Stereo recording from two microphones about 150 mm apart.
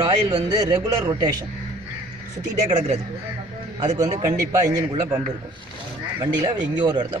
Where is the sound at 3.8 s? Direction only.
25° right (ahead or behind).